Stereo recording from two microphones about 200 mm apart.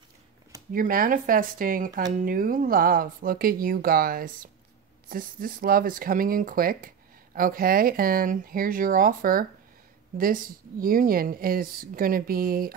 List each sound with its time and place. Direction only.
0.7 s speech: 45° right (ahead or behind)